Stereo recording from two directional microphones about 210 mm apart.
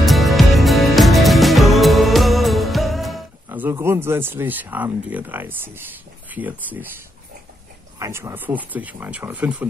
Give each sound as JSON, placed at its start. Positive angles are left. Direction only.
{"t": 0.0, "sound": "music", "side_deg": 0}
{"t": 3.4, "sound": "speech", "side_deg": -10}
{"t": 8.0, "sound": "speech", "side_deg": -10}